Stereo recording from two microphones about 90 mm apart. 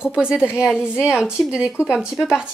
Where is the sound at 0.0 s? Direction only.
10° right (ahead or behind).